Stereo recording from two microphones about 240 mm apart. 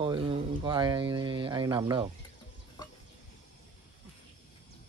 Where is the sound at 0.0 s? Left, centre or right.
Right.